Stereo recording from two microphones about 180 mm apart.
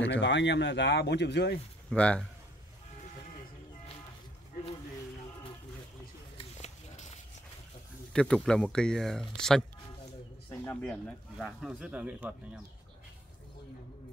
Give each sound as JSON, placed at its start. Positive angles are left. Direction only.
{"t": 0.1, "sound": "speech", "side_deg": 80}
{"t": 1.9, "sound": "speech", "side_deg": 5}
{"t": 6.3, "sound": "a sound", "side_deg": 40}
{"t": 8.1, "sound": "speech", "side_deg": 5}